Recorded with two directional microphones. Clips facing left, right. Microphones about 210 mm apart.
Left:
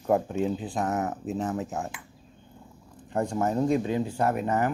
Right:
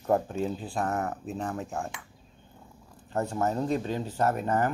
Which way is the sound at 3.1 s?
15° left (ahead or behind).